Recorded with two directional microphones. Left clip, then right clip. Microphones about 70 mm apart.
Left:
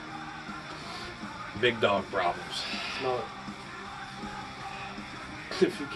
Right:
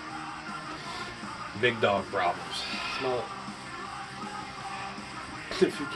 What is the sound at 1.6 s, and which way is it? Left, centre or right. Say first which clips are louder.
Speech: even; left.